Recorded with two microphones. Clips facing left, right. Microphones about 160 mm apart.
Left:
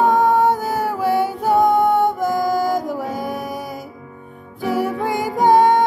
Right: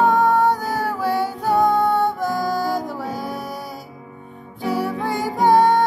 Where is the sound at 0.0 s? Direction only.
15° left (ahead or behind).